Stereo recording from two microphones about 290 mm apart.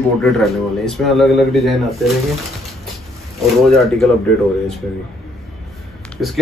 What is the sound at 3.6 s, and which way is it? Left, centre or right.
Speech, centre.